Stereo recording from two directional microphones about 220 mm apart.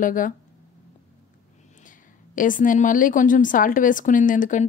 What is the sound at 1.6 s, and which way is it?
Speech, 35° left (ahead or behind).